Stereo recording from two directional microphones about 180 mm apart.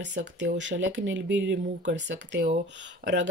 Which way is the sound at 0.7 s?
85° right.